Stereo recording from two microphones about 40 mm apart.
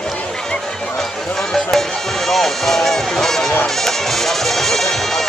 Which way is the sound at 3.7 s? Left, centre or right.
Centre.